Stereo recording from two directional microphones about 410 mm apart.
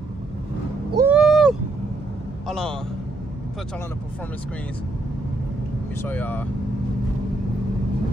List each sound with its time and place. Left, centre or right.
0.9 s a sound: centre
2.4 s a man's voice: centre
6.0 s a man's voice: centre